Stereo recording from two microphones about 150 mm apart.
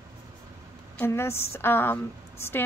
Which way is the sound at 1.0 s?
15° left (ahead or behind).